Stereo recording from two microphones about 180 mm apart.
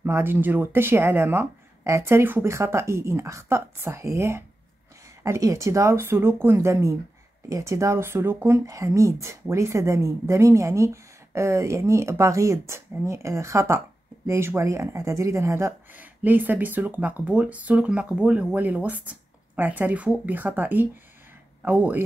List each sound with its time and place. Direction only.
0.0 s speech: 10° right (ahead or behind)